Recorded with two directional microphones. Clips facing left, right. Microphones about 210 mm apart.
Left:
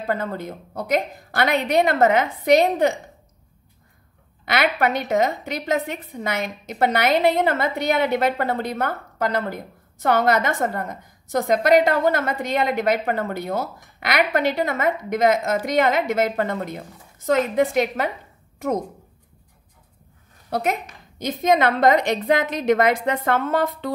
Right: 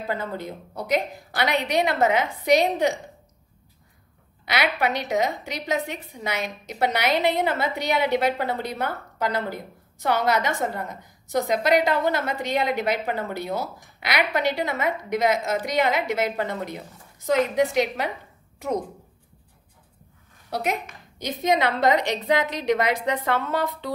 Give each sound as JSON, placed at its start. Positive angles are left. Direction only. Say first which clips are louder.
{"t": 0.0, "sound": "a woman's voice", "louder": "left 3 dB", "side_deg": 50}
{"t": 4.5, "sound": "a woman's voice", "louder": "left 3 dB", "side_deg": 50}
{"t": 20.4, "sound": "a woman's voice", "louder": "left 3 dB", "side_deg": 50}